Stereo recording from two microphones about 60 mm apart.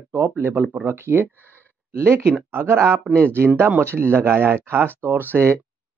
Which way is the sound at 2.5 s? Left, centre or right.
Right.